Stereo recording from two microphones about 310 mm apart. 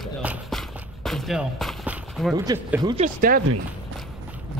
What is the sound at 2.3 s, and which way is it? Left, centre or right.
Speech, centre.